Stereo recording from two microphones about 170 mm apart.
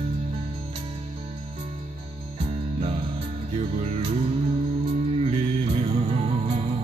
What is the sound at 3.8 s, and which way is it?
Music, 40° right (ahead or behind).